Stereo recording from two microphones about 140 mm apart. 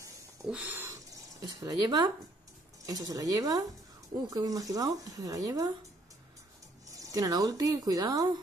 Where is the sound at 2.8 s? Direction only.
25° right (ahead or behind).